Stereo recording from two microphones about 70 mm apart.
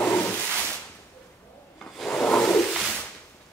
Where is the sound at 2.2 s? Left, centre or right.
Centre.